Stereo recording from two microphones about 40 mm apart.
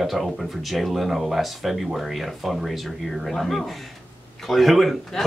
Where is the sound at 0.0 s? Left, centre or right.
Centre.